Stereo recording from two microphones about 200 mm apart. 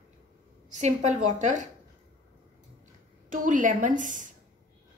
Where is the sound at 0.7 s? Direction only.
35° right (ahead or behind).